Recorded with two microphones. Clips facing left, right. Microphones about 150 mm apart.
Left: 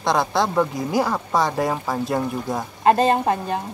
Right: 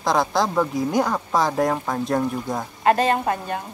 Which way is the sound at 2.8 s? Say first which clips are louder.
Left 2 dB; 25° left (ahead or behind).